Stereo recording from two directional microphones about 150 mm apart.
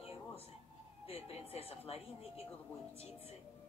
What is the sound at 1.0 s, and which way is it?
Speech, 40° left (ahead or behind).